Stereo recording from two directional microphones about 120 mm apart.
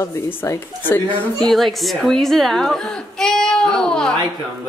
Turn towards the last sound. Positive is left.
turn(degrees=5)  # may be behind; listen again after turning